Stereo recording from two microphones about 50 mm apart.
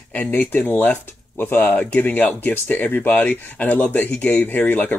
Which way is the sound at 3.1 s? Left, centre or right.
Left.